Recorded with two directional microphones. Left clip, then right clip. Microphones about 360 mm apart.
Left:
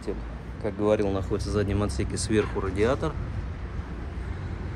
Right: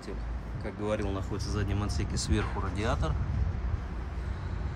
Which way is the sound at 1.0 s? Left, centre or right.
Centre.